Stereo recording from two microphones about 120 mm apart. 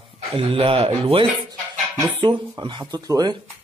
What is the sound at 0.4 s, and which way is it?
Speech, 50° right (ahead or behind).